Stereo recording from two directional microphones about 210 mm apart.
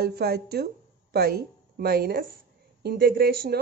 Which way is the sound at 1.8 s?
45° right (ahead or behind).